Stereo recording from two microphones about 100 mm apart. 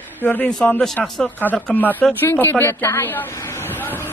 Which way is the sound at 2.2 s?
20° left (ahead or behind).